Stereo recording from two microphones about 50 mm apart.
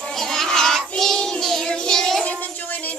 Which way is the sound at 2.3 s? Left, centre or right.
Left.